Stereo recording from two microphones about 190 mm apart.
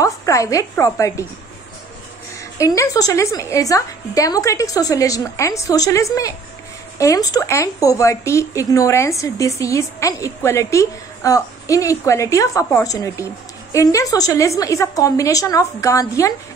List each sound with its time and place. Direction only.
0.0 s speech: 15° left (ahead or behind)
2.6 s speech: 15° left (ahead or behind)